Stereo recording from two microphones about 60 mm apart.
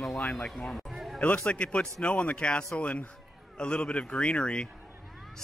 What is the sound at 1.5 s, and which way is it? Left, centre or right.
A man's voice, centre.